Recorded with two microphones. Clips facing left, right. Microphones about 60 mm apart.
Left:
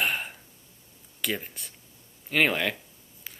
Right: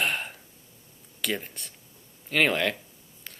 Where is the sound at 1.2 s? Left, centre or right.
Centre.